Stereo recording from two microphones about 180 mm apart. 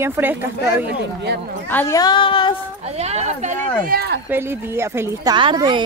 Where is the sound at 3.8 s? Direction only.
55° right (ahead or behind).